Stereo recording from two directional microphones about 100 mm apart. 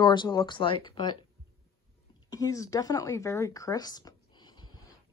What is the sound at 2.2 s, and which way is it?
Speech, 35° left (ahead or behind).